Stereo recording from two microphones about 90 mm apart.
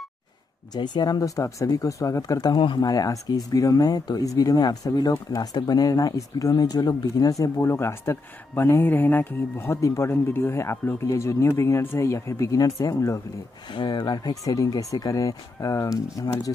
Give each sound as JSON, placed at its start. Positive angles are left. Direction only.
{"t": 0.7, "sound": "speech", "side_deg": 55}
{"t": 2.5, "sound": "speech", "side_deg": 60}
{"t": 2.9, "sound": "speech", "side_deg": 40}
{"t": 13.7, "sound": "speech", "side_deg": 60}